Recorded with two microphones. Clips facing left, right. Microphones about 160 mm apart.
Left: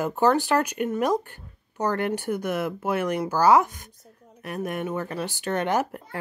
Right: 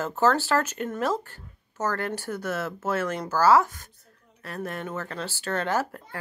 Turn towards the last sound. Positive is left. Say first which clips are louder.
# left 2 dB
turn(degrees=20)  # may be behind; listen again after turning